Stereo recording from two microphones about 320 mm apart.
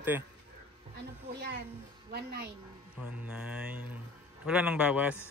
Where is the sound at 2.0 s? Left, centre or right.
Right.